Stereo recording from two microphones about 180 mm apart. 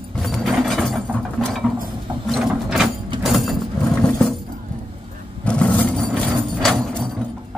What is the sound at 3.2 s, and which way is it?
Vehicle, centre (ahead or behind).